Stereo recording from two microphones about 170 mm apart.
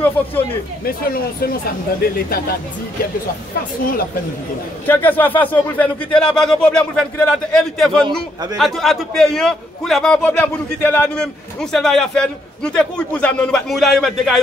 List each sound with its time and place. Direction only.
0.0 s speech: 10° left (ahead or behind)
0.8 s speech: 60° left (ahead or behind)
4.8 s a man's voice: 10° left (ahead or behind)